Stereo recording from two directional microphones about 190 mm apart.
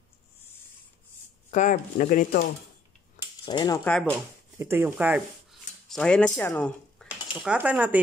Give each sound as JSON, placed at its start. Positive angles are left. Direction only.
{"t": 1.5, "sound": "speech", "side_deg": 40}
{"t": 3.4, "sound": "a sound", "side_deg": 20}
{"t": 3.8, "sound": "speech", "side_deg": 0}
{"t": 4.6, "sound": "speech", "side_deg": -10}
{"t": 7.3, "sound": "speech", "side_deg": -10}